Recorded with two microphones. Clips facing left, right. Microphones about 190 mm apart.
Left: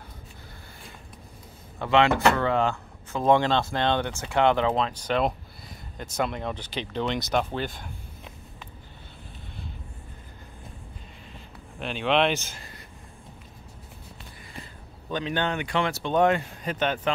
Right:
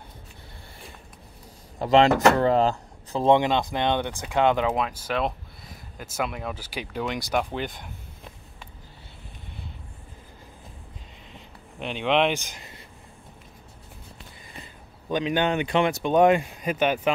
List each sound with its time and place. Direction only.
1.8 s speech: 40° right (ahead or behind)
3.3 s speech: 15° right (ahead or behind)
11.8 s speech: 15° right (ahead or behind)
15.0 s speech: 15° right (ahead or behind)